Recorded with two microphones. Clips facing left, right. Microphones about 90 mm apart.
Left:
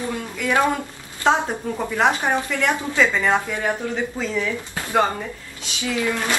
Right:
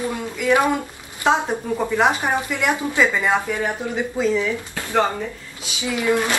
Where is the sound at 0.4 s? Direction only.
15° right (ahead or behind).